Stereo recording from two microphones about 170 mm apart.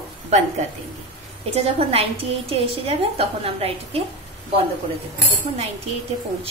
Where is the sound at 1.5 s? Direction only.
35° right (ahead or behind).